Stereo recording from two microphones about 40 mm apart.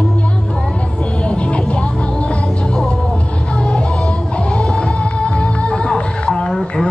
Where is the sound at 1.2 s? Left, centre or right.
Left.